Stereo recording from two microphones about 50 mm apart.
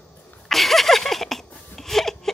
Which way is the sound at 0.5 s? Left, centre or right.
Centre.